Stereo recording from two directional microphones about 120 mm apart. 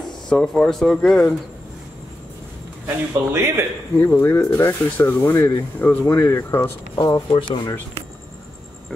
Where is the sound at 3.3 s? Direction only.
20° right (ahead or behind).